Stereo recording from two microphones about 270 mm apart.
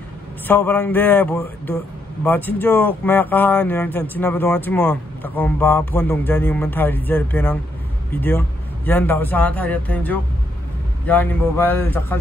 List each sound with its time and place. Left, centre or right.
0.5 s speech: centre